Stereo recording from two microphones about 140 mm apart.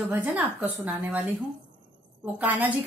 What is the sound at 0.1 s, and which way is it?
Speech, 10° right (ahead or behind).